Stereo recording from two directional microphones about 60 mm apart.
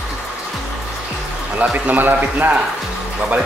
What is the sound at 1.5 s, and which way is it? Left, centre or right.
Speech, right.